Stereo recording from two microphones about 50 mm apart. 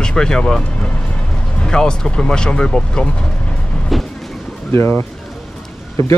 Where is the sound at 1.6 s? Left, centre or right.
Centre.